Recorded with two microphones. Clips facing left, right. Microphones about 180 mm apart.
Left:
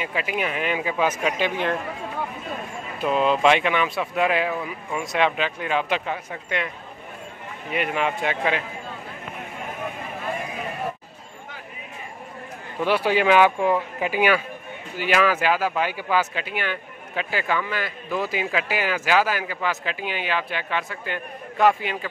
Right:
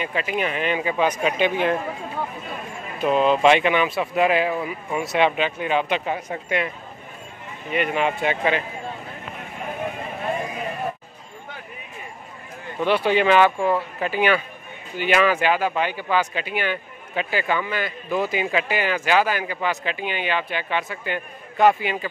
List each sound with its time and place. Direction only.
0.0 s speech: 5° left (ahead or behind)
1.2 s a man's voice: 5° right (ahead or behind)
3.0 s speech: centre (ahead or behind)
6.1 s speech: 40° right (ahead or behind)
7.7 s speech: centre (ahead or behind)
12.8 s speech: 10° left (ahead or behind)